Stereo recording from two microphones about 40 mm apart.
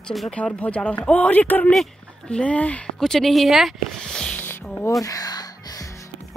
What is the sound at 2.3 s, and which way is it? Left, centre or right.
Speech, left.